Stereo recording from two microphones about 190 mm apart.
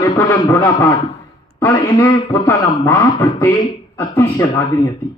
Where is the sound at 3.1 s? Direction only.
25° left (ahead or behind).